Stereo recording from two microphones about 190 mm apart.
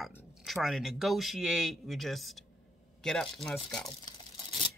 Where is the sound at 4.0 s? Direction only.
25° left (ahead or behind).